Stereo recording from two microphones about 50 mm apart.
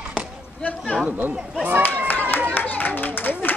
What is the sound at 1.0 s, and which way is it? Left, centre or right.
Speech, right.